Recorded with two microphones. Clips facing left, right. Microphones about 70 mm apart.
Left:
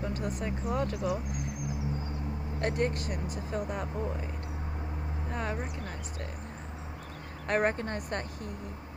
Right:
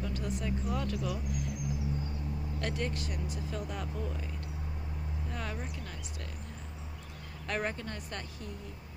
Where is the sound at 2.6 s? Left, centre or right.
Left.